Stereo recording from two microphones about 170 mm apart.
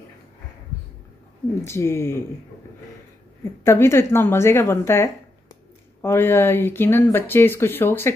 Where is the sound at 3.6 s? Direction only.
15° left (ahead or behind).